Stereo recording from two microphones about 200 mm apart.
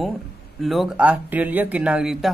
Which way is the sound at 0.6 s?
Centre (ahead or behind).